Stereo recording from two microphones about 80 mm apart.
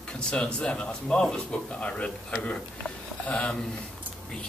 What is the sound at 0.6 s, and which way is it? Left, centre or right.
Speech, centre.